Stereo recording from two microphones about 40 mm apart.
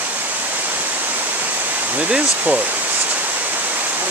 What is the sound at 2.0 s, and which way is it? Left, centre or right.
Speech, right.